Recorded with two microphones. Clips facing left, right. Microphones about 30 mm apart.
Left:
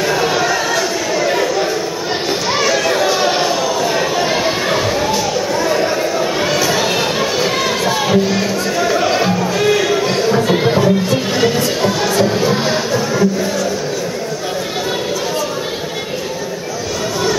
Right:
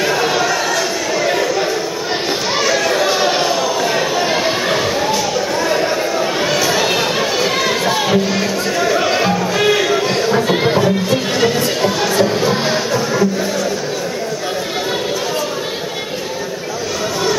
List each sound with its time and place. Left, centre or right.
0.1 s chatter: centre
9.6 s music: centre
9.8 s a sound: centre